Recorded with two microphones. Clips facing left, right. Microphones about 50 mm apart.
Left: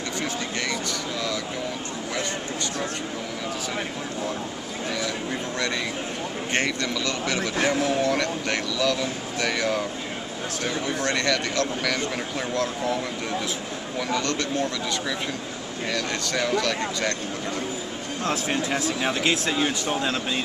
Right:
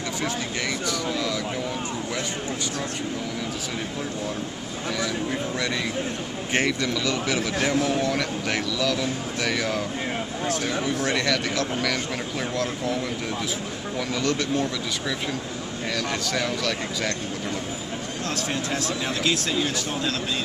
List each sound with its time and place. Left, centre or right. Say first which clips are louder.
6.5 s a man's voice: right 2 dB; centre
13.9 s a man's voice: even; centre
15.9 s a man's voice: even; centre
18.2 s speech: left 4 dB; centre